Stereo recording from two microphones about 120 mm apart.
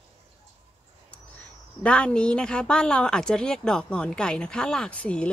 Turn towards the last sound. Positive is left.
turn(degrees=10)  # may be behind; listen again after turning